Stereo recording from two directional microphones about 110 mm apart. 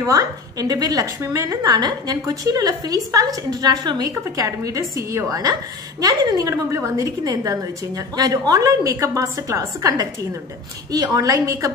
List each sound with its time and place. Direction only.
0.0 s a woman's voice: 35° right (ahead or behind)